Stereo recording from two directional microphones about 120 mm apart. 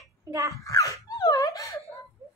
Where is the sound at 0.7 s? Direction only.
30° left (ahead or behind).